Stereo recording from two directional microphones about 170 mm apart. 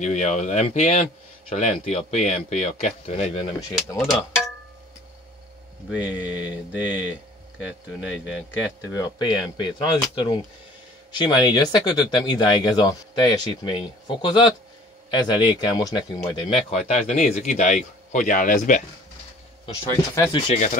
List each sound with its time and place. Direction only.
0.0 s a man's voice: 45° left (ahead or behind)
5.9 s speech: 10° right (ahead or behind)
8.9 s speech: 25° left (ahead or behind)
16.4 s a man's voice: 35° left (ahead or behind)
19.8 s speech: 15° left (ahead or behind)